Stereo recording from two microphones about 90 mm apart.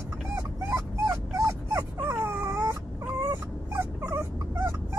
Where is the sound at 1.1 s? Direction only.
30° right (ahead or behind).